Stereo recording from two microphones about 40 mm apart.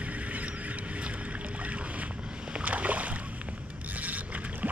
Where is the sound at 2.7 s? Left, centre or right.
Right.